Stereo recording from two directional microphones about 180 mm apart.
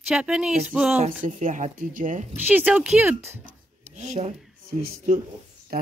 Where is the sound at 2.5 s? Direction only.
10° right (ahead or behind).